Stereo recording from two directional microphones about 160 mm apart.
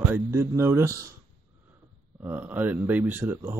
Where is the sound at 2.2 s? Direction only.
10° right (ahead or behind).